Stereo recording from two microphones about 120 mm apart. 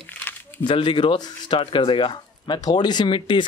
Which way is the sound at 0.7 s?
45° left (ahead or behind).